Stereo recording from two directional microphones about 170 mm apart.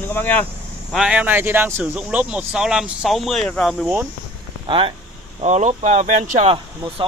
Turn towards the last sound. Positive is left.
turn(degrees=-50)  # may be behind; listen again after turning